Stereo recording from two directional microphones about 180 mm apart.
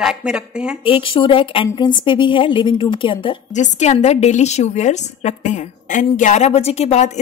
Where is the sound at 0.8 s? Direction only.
30° left (ahead or behind).